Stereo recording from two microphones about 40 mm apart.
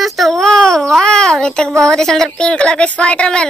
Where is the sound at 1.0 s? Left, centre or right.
Centre.